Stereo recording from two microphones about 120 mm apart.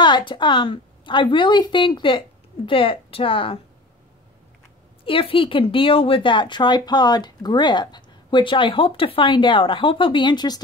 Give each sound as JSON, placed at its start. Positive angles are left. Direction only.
{"t": 0.0, "sound": "a woman's voice", "side_deg": 40}
{"t": 5.0, "sound": "speech", "side_deg": 50}